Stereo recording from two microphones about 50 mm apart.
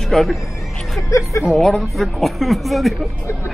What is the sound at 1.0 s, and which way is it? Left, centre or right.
Speech, left.